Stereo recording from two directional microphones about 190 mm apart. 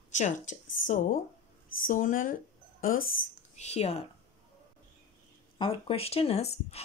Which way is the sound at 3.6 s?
35° left (ahead or behind).